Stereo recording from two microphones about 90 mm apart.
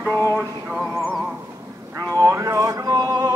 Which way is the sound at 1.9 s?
35° right (ahead or behind).